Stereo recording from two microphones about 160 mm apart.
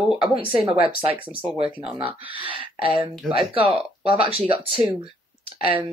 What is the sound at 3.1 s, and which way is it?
Speech, centre (ahead or behind).